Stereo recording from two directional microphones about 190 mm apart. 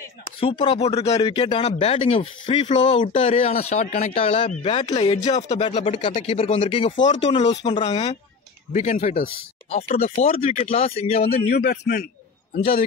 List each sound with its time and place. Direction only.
0.4 s speech: 25° left (ahead or behind)
2.7 s speech: 40° left (ahead or behind)
11.5 s a man's voice: 60° left (ahead or behind)